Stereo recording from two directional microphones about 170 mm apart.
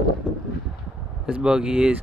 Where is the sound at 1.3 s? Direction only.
5° right (ahead or behind).